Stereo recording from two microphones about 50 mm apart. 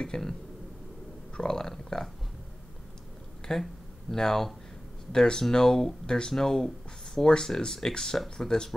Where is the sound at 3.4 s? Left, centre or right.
Centre.